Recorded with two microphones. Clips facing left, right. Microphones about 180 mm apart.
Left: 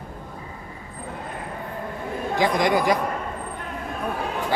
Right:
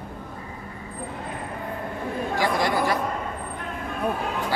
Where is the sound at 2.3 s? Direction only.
20° left (ahead or behind).